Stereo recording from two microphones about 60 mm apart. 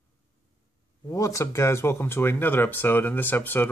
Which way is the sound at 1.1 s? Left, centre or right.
Left.